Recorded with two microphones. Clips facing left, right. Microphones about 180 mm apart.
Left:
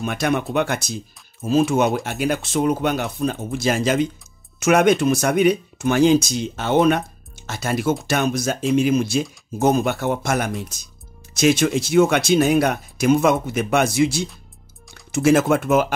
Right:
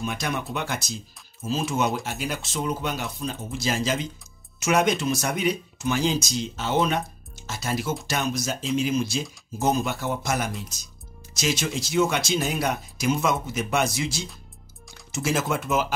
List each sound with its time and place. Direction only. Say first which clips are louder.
0.0 s speech: left 7 dB; 60° left (ahead or behind)